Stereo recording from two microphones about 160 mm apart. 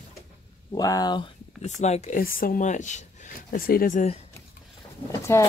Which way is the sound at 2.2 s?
65° left (ahead or behind).